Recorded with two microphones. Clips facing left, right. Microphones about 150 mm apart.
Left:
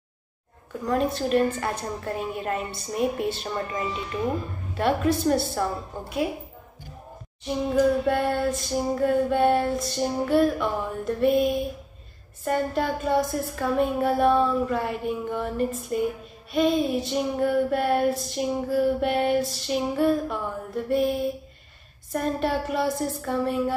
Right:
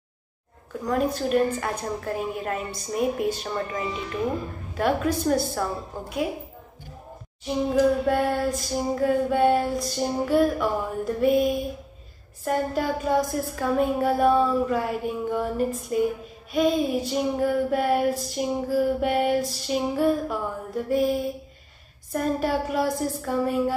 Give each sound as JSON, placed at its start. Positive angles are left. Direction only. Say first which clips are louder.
{"t": 1.0, "sound": "female singing", "louder": "even", "side_deg": 0}
{"t": 7.4, "sound": "female singing", "louder": "right 1 dB", "side_deg": 0}
{"t": 12.4, "sound": "female singing", "louder": "even", "side_deg": -5}